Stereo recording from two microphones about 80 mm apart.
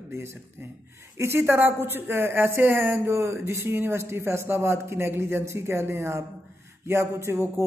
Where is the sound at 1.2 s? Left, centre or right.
Right.